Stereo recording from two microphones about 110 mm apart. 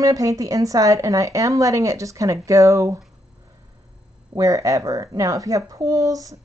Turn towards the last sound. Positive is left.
turn(degrees=-30)  # may be behind; listen again after turning